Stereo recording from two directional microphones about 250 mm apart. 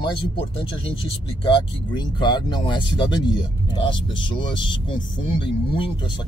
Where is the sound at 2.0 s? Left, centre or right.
Centre.